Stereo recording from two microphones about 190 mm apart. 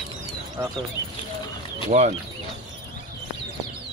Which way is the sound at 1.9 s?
40° right (ahead or behind).